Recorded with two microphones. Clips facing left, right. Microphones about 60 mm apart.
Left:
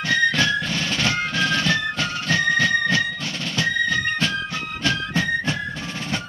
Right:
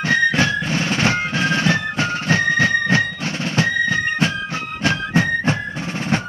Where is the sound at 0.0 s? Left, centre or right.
Right.